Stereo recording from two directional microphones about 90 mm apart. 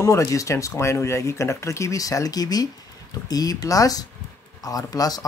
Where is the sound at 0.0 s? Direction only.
35° left (ahead or behind).